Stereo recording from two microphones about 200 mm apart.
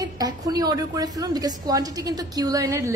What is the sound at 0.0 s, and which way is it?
A woman's voice, 20° right (ahead or behind).